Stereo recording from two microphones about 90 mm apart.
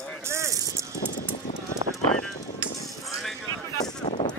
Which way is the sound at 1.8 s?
45° right (ahead or behind).